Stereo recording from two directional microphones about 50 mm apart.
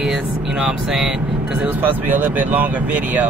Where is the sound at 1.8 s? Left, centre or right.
Right.